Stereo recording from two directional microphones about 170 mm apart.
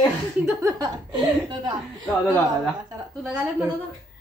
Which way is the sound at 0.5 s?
20° right (ahead or behind).